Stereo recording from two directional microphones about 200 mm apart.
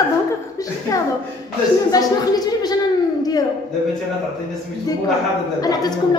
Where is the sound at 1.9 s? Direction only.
20° left (ahead or behind).